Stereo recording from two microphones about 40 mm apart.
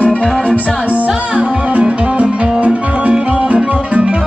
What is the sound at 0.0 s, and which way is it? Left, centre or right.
Music, left.